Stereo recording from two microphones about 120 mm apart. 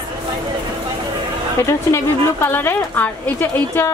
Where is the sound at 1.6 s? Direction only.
25° left (ahead or behind).